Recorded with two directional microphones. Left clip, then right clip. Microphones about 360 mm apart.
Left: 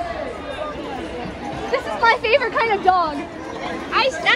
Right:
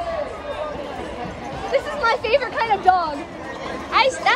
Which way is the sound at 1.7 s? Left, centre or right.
Centre.